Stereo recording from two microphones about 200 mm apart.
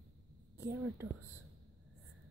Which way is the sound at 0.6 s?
15° right (ahead or behind).